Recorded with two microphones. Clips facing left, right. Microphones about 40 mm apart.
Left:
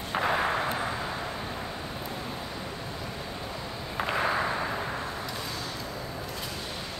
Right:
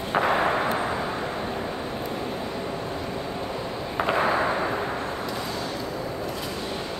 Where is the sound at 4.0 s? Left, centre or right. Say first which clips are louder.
Right 5 dB; centre.